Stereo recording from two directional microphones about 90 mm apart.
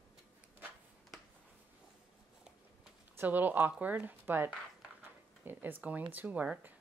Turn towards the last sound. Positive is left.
turn(degrees=-20)  # may be behind; listen again after turning